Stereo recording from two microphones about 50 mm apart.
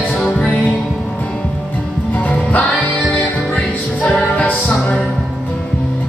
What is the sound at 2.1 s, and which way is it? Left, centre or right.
Music, left.